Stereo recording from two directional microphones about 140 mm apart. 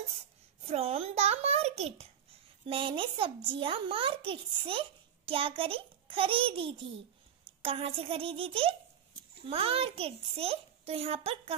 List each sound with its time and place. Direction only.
0.7 s a child's voice: 45° right (ahead or behind)